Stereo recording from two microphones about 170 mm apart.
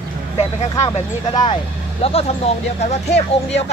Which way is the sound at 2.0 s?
35° left (ahead or behind).